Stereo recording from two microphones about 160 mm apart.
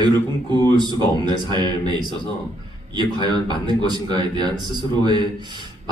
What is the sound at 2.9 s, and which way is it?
A man's voice, 25° right (ahead or behind).